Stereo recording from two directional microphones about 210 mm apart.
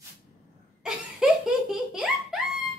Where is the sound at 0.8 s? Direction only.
5° right (ahead or behind).